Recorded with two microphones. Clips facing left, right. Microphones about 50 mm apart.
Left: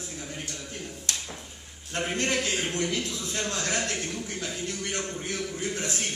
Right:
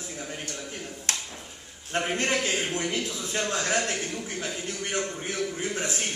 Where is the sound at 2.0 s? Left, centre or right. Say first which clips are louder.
Even; right.